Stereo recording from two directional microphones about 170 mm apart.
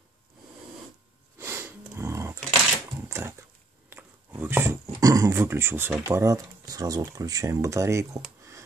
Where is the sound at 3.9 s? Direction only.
15° right (ahead or behind).